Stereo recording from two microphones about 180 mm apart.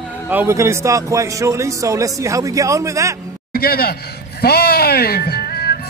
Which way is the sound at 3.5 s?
55° left (ahead or behind).